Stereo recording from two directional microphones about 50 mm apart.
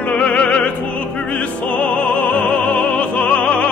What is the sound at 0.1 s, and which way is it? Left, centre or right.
Opera, left.